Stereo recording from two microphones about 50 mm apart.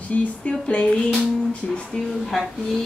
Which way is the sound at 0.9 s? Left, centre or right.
Centre.